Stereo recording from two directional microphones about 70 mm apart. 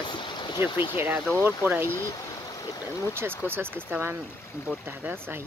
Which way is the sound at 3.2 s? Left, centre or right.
Right.